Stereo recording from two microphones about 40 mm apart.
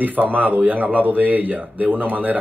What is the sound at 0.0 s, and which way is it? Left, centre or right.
Speech, right.